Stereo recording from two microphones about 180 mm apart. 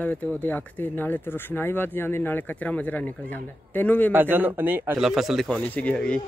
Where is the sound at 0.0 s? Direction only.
10° left (ahead or behind).